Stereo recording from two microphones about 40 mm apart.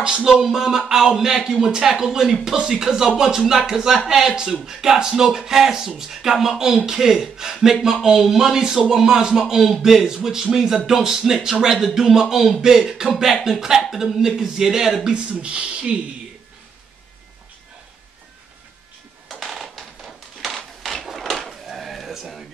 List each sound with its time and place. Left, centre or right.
0.0 s a man's voice: centre
15.0 s speech: right
19.4 s a sound: centre